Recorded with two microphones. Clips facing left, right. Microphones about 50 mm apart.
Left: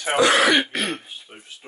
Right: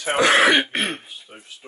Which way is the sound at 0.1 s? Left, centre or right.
Right.